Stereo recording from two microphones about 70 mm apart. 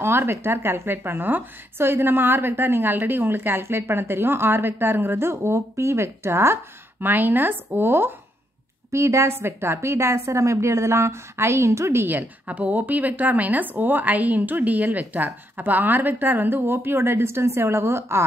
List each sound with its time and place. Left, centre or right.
0.0 s a woman's voice: right